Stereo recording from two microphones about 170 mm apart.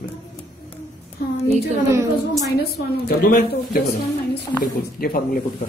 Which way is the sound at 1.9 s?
15° right (ahead or behind).